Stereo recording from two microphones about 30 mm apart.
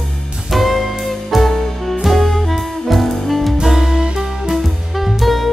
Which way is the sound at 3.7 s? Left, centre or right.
Centre.